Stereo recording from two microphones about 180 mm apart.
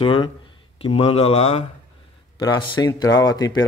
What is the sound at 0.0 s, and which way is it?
Speech, 30° left (ahead or behind).